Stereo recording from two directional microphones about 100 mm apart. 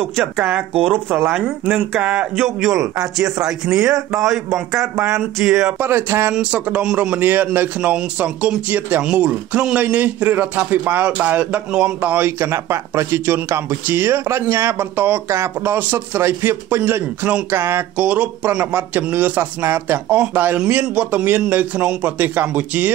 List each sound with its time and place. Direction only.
0.2 s a man's voice: 10° right (ahead or behind)
0.9 s a sound: 20° right (ahead or behind)
1.3 s a man's voice: 10° right (ahead or behind)
2.3 s a man's voice: centre (ahead or behind)
2.7 s speech: 35° right (ahead or behind)
3.4 s a man's voice: 5° right (ahead or behind)
4.9 s a man's voice: 15° right (ahead or behind)
5.8 s a sound: 20° right (ahead or behind)
6.3 s a man's voice: 10° right (ahead or behind)